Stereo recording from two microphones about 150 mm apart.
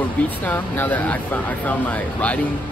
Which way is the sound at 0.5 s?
10° left (ahead or behind).